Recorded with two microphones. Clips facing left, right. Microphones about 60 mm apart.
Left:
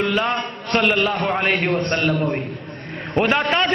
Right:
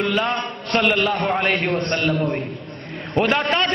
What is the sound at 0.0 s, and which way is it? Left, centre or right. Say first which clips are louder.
A man's voice: left 1 dB; centre.